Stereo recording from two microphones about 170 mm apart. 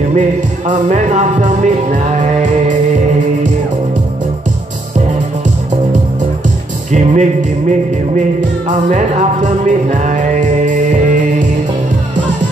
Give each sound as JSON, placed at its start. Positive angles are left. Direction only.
{"t": 0.1, "sound": "speech", "side_deg": -45}
{"t": 6.9, "sound": "music", "side_deg": -45}
{"t": 8.6, "sound": "music", "side_deg": -45}